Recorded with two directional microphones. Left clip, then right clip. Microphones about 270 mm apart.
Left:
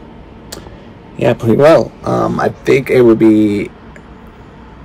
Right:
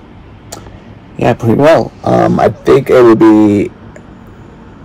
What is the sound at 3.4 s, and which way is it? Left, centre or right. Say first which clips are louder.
Speech: right 5 dB; left.